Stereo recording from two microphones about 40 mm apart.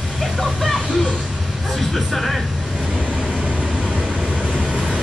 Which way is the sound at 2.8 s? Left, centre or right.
Right.